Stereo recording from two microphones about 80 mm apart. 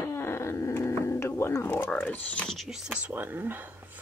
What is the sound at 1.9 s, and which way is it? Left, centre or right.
Speech, left.